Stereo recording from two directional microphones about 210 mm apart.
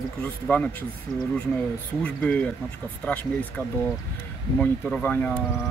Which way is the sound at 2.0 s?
5° left (ahead or behind).